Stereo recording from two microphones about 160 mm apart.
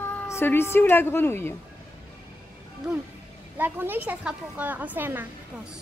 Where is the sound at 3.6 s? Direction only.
10° right (ahead or behind).